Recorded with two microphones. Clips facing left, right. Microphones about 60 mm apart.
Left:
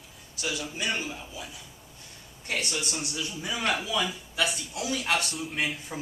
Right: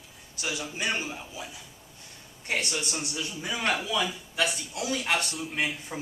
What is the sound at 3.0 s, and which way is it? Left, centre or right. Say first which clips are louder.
Speech: even; centre.